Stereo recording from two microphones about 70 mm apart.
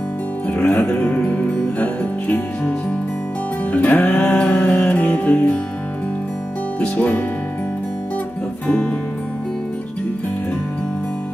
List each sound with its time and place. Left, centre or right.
0.5 s music: left
3.7 s music: left
6.8 s music: left
8.6 s music: centre